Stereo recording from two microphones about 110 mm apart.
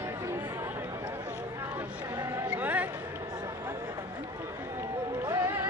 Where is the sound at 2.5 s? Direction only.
15° right (ahead or behind).